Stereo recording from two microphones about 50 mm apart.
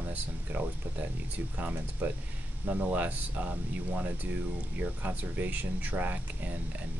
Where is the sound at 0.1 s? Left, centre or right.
Right.